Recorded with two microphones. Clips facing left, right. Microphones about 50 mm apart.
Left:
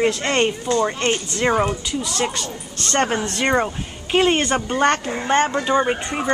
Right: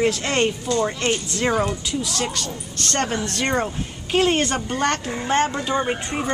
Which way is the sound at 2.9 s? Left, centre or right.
Left.